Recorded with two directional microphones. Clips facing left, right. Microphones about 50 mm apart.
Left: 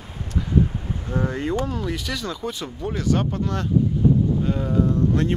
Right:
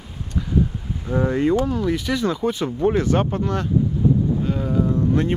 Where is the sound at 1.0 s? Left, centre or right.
Right.